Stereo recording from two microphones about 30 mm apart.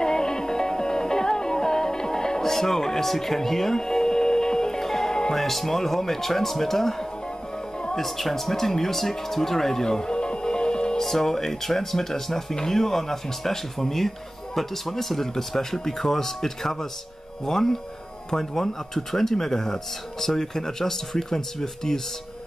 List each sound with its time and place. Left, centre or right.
0.0 s music: left
5.3 s speech: centre
9.8 s music: left
11.0 s speech: centre